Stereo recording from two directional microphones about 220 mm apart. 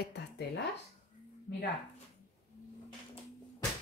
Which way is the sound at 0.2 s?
50° left (ahead or behind).